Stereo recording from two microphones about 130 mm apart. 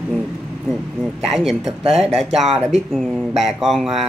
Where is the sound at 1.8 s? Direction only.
50° right (ahead or behind).